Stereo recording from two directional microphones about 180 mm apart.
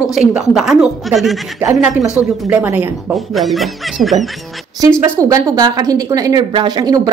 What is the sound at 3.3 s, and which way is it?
Speech, centre (ahead or behind).